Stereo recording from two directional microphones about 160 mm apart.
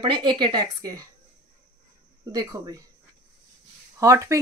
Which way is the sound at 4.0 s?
20° right (ahead or behind).